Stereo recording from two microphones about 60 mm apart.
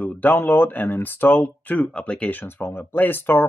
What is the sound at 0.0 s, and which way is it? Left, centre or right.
Speech, left.